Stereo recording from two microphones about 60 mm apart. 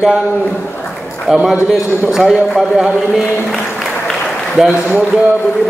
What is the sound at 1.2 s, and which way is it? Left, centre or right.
A man's voice, centre.